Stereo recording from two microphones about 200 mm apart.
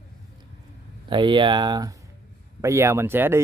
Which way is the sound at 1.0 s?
25° right (ahead or behind).